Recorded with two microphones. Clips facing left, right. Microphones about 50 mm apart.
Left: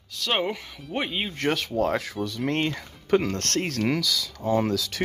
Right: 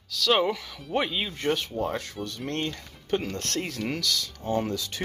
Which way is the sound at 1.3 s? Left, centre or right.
Left.